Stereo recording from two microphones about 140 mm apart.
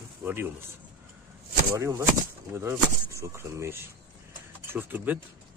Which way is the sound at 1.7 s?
15° right (ahead or behind).